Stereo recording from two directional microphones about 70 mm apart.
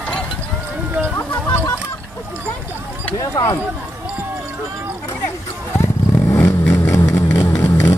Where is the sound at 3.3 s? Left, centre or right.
Left.